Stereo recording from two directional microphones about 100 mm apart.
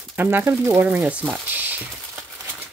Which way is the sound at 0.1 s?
20° right (ahead or behind).